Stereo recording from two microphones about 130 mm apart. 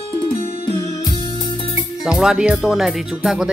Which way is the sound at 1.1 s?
35° left (ahead or behind).